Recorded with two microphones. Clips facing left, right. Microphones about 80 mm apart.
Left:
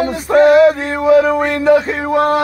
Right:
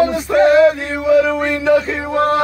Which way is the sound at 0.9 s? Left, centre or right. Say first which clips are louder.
Left 2 dB; left.